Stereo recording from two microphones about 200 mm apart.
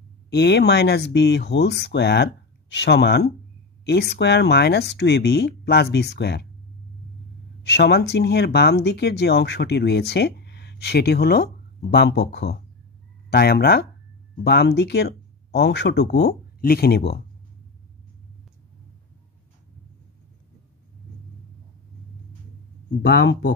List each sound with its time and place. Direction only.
0.3 s speech: 55° left (ahead or behind)
7.6 s speech: 55° left (ahead or behind)
23.0 s speech: 60° left (ahead or behind)